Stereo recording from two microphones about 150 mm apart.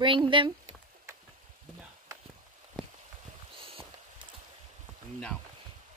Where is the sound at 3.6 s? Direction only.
35° right (ahead or behind).